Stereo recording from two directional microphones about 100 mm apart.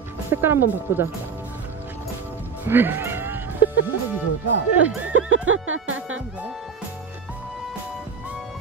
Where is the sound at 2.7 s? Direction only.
20° right (ahead or behind).